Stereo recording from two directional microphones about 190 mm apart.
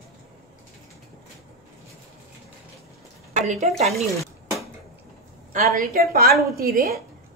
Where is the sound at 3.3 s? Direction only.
40° right (ahead or behind).